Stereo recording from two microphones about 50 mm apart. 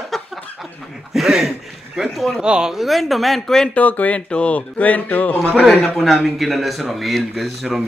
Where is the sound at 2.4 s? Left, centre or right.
Centre.